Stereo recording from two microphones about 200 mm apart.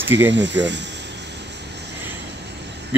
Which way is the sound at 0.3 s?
65° right (ahead or behind).